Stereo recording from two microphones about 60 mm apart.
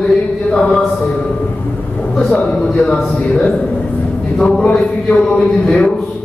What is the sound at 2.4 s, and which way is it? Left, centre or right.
A man's voice, centre.